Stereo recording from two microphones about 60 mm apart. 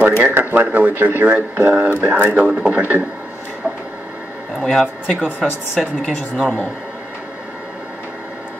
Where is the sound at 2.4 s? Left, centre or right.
Centre.